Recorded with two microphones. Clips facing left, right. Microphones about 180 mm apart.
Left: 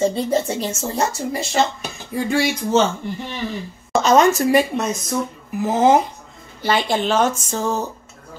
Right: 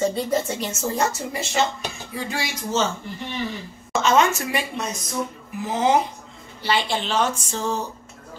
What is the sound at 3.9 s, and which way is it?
Speech, 40° left (ahead or behind).